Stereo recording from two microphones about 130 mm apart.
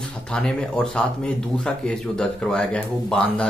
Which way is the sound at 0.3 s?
5° left (ahead or behind).